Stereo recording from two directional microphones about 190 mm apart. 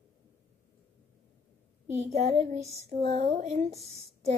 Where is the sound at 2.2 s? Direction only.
35° right (ahead or behind).